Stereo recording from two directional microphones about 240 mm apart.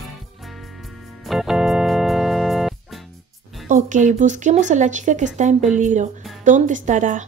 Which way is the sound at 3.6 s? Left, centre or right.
Right.